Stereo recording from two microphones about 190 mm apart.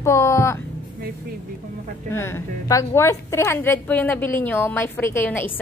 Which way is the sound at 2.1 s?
15° left (ahead or behind).